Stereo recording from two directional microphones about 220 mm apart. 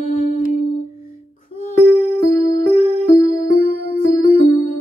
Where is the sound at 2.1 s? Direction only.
35° left (ahead or behind).